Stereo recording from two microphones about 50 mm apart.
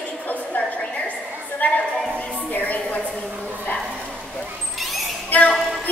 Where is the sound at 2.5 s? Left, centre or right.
Left.